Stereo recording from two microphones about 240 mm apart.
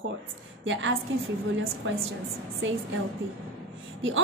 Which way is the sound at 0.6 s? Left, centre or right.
Right.